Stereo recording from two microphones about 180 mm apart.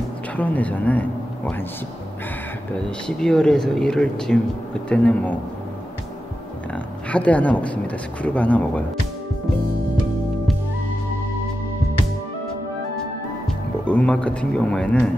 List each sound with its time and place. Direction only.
0.4 s speech: 10° left (ahead or behind)
3.1 s speech: 5° left (ahead or behind)
7.1 s speech: 5° left (ahead or behind)
13.8 s speech: 5° left (ahead or behind)